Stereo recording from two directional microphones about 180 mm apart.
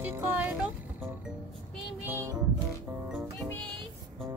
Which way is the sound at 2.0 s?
15° right (ahead or behind).